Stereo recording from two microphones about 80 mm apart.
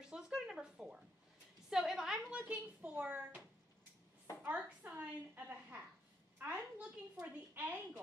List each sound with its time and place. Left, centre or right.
0.1 s a woman's voice: centre
2.2 s a child's voice: centre